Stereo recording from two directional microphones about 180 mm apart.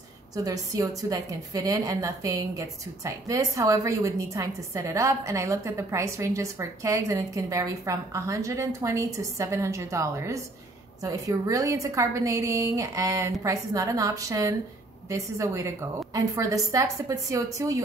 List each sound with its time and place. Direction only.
0.4 s a woman's voice: 20° right (ahead or behind)